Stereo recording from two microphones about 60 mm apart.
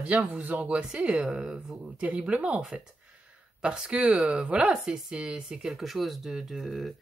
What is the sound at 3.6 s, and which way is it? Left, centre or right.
Speech, centre.